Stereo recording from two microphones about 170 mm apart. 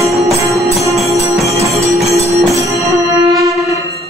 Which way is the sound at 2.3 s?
20° right (ahead or behind).